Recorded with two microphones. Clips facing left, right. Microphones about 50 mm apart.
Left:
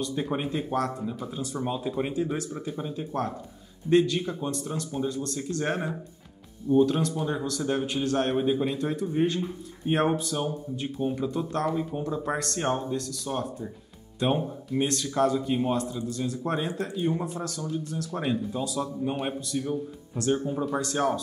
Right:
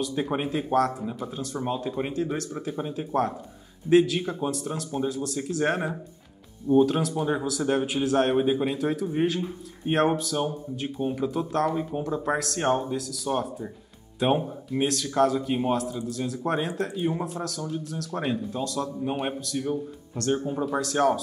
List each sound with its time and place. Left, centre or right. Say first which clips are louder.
0.1 s speech: right 2 dB; centre
2.1 s speech: even; centre
2.5 s speech: right 2 dB; centre
8.4 s speech: right 2 dB; centre
8.6 s speech: right 2 dB; centre
11.7 s speech: right 1 dB; centre
12.0 s speech: right 2 dB; centre
12.5 s speech: right 3 dB; centre
19.0 s speech: right 2 dB; centre
20.3 s speech: right 1 dB; centre